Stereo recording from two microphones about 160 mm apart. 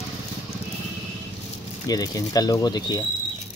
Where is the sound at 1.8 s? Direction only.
25° left (ahead or behind).